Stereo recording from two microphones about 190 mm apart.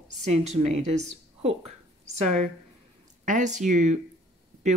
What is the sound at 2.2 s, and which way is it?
Speech, 35° right (ahead or behind).